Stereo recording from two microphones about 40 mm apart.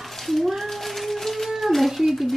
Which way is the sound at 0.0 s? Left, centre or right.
Centre.